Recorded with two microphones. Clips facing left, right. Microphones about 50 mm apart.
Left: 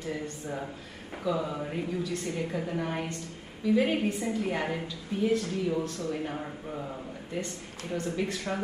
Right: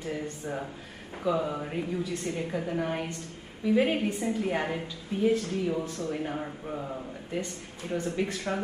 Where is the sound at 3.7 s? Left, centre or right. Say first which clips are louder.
Right 1 dB; centre.